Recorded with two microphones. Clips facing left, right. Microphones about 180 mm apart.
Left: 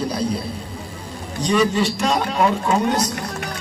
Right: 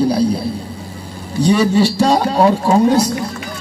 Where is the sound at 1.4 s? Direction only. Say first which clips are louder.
Right 5 dB; 30° right (ahead or behind).